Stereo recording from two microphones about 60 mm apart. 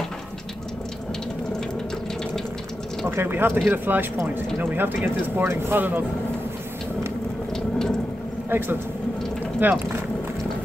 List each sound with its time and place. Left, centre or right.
3.1 s speech: right
8.5 s speech: right